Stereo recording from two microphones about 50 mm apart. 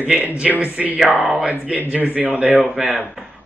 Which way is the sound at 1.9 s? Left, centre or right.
Right.